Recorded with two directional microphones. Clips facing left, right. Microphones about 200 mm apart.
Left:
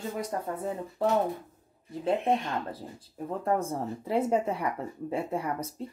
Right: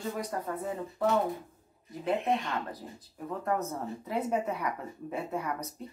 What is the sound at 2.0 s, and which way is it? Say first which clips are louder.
Speech: left 3 dB; 30° left (ahead or behind).